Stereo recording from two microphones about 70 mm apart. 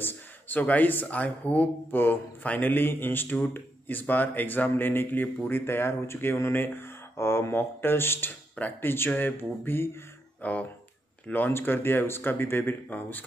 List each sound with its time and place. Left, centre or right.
0.0 s speech: left
8.5 s speech: left